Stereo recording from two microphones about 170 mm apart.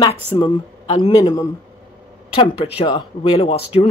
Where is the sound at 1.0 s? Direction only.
20° left (ahead or behind).